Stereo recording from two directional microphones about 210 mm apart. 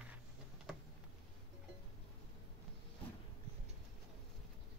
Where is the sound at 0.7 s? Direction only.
Centre (ahead or behind).